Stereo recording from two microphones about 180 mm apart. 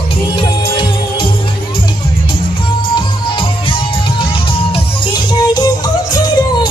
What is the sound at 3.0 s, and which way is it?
Music, 30° left (ahead or behind).